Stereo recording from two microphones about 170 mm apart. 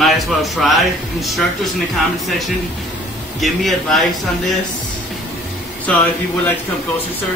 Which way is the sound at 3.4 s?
Centre (ahead or behind).